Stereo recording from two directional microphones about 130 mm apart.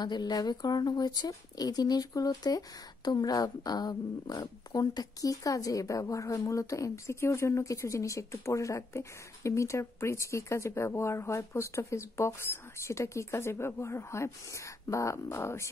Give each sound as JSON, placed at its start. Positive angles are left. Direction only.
{"t": 0.0, "sound": "speech", "side_deg": 30}